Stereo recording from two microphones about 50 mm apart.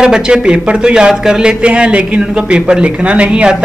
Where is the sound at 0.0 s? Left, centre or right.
Centre.